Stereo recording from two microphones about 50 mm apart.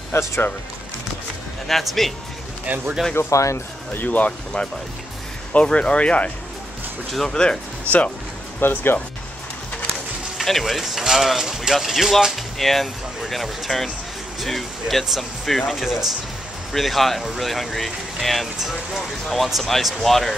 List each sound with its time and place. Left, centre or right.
0.1 s speech: left
1.7 s speech: centre
2.6 s speech: right
3.2 s speech: left
3.9 s speech: left
7.2 s speech: centre
8.5 s speech: left
10.3 s speech: centre